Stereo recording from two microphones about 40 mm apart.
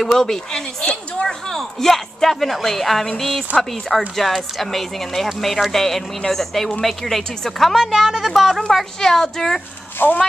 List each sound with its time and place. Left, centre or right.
0.0 s a woman's voice: centre
0.5 s a woman's voice: left
1.5 s a woman's voice: centre
7.9 s a woman's voice: centre
8.6 s a woman's voice: centre
10.0 s speech: left